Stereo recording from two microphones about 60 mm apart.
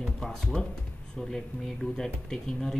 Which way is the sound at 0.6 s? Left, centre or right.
Centre.